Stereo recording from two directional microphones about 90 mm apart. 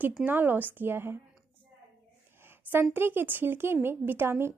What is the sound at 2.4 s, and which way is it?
A woman's voice, 25° right (ahead or behind).